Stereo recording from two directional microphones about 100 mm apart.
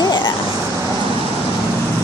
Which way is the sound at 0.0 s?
45° left (ahead or behind).